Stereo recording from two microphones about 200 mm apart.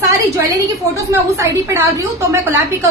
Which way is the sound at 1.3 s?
15° right (ahead or behind).